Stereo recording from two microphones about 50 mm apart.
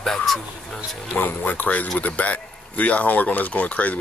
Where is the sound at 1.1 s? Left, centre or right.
Left.